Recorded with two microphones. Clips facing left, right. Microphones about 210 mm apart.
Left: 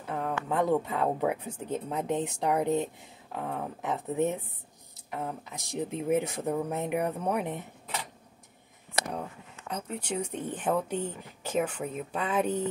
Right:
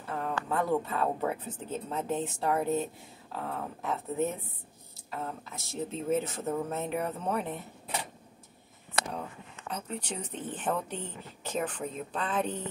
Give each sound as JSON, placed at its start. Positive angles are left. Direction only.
{"t": 0.1, "sound": "speech", "side_deg": 20}
{"t": 9.7, "sound": "speech", "side_deg": 10}